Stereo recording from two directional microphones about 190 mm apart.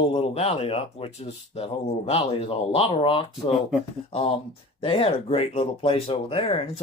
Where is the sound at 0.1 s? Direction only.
30° left (ahead or behind).